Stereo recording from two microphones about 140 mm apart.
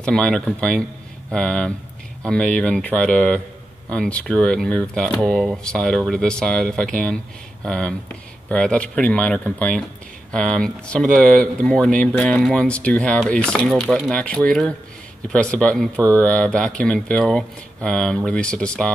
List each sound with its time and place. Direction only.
0.0 s speech: 5° left (ahead or behind)